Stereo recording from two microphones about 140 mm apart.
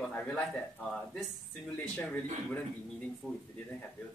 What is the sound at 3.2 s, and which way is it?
Speech, 5° left (ahead or behind).